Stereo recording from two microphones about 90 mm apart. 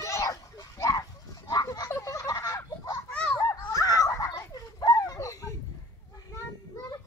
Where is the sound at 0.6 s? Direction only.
45° left (ahead or behind).